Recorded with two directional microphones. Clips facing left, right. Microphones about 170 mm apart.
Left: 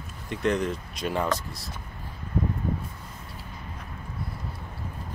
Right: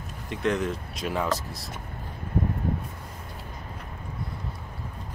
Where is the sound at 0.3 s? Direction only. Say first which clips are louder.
Left 1 dB; centre (ahead or behind).